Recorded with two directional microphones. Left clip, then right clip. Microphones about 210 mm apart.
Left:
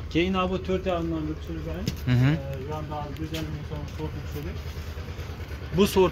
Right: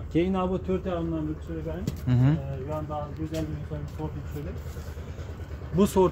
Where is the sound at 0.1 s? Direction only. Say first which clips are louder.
Left 1 dB; 50° right (ahead or behind).